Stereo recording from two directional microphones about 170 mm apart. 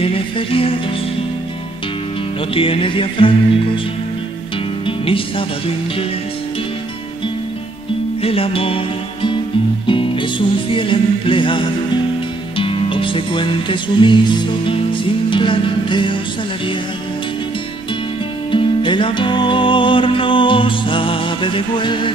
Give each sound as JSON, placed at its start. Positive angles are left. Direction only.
{"t": 0.0, "sound": "music", "side_deg": 35}
{"t": 2.5, "sound": "music", "side_deg": 30}
{"t": 4.8, "sound": "music", "side_deg": 30}
{"t": 8.2, "sound": "music", "side_deg": 35}
{"t": 18.5, "sound": "music", "side_deg": 30}